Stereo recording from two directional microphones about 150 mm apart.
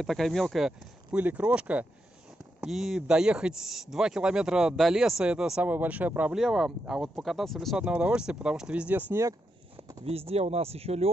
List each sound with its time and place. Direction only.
0.0 s speech: centre (ahead or behind)
10.0 s speech: 40° right (ahead or behind)